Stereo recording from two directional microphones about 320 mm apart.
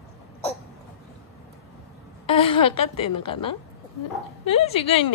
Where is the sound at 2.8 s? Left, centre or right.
Centre.